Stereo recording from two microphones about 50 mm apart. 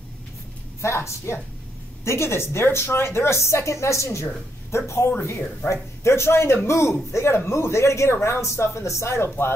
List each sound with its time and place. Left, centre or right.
0.7 s a woman's voice: left
3.3 s a woman's voice: left